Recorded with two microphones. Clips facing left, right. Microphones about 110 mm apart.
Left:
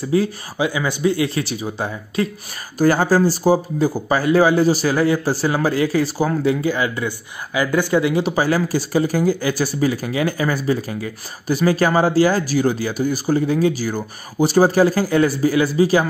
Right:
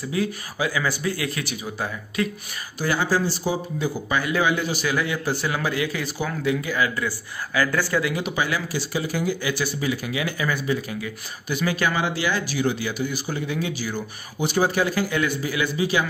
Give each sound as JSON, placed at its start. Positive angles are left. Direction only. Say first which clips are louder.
{"t": 0.1, "sound": "speech", "louder": "left 7 dB", "side_deg": 30}
{"t": 2.8, "sound": "speech", "louder": "left 8 dB", "side_deg": 45}